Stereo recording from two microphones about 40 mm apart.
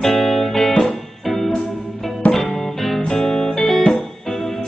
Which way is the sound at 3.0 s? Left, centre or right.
Left.